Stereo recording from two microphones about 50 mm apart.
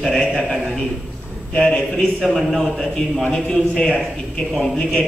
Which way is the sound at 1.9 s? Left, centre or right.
Centre.